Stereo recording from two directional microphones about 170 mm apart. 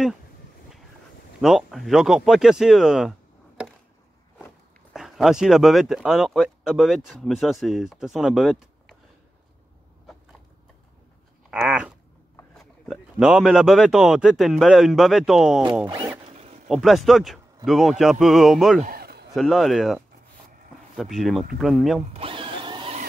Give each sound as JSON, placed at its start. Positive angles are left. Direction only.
{"t": 1.4, "sound": "speech", "side_deg": 0}
{"t": 4.9, "sound": "speech", "side_deg": 0}
{"t": 11.5, "sound": "speech", "side_deg": -5}
{"t": 15.9, "sound": "speech", "side_deg": -20}
{"t": 16.3, "sound": "a sound", "side_deg": -40}
{"t": 16.6, "sound": "speech", "side_deg": 0}
{"t": 18.8, "sound": "a sound", "side_deg": -60}
{"t": 19.3, "sound": "speech", "side_deg": 0}
{"t": 22.1, "sound": "a sound", "side_deg": -30}